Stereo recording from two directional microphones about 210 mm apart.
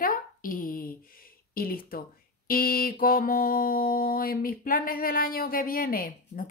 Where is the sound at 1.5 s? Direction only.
45° left (ahead or behind).